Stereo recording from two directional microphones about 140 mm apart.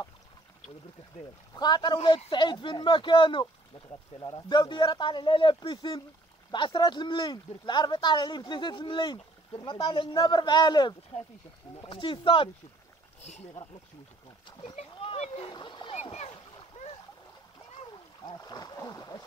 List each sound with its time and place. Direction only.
1.5 s speech: 30° left (ahead or behind)
2.0 s speech: 40° left (ahead or behind)
13.2 s speech: 50° left (ahead or behind)
14.6 s speech: 45° left (ahead or behind)
15.5 s splash: 35° left (ahead or behind)
16.0 s splash: 50° left (ahead or behind)
18.2 s speech: 30° left (ahead or behind)